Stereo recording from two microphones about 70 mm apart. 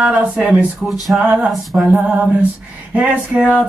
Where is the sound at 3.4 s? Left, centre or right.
Centre.